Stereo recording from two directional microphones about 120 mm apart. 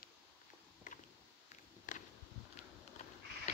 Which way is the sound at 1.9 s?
90° left.